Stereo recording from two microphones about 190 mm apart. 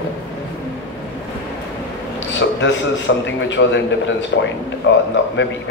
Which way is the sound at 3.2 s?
70° left (ahead or behind).